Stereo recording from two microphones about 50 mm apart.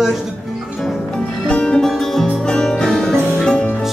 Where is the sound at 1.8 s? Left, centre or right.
Centre.